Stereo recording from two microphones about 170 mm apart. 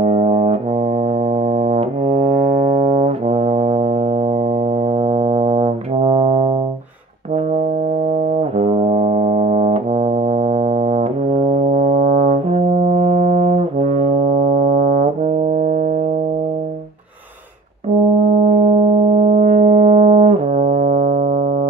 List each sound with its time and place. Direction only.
0.0 s brass instrument: 40° right (ahead or behind)
4.9 s brass instrument: 40° right (ahead or behind)
8.4 s brass instrument: 40° right (ahead or behind)
18.5 s music: 40° right (ahead or behind)